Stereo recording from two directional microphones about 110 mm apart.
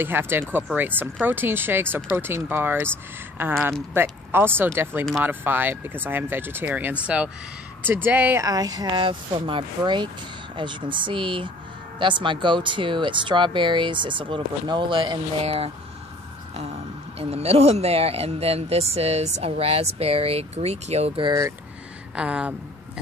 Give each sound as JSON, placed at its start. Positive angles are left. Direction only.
{"t": 0.0, "sound": "speech", "side_deg": -20}
{"t": 8.5, "sound": "speech", "side_deg": -35}
{"t": 15.4, "sound": "speech", "side_deg": -70}
{"t": 17.2, "sound": "speech", "side_deg": -65}
{"t": 22.1, "sound": "speech", "side_deg": -10}